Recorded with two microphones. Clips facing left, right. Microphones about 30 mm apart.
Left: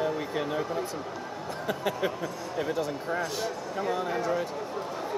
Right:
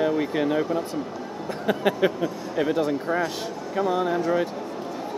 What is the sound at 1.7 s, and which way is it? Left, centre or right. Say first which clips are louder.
Speech: right 8 dB; right.